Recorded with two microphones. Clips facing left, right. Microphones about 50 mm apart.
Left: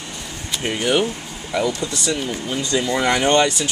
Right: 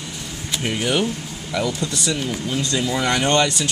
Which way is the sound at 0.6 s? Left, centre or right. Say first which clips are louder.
Left 2 dB; centre.